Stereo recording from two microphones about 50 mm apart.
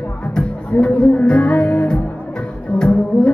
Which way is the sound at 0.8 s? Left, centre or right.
Centre.